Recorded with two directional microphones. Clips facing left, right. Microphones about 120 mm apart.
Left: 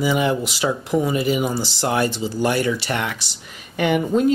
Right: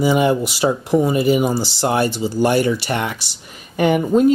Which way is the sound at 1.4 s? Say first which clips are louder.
Right 4 dB; 10° right (ahead or behind).